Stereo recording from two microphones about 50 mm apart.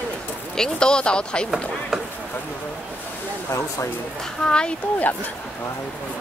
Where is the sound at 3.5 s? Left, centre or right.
Left.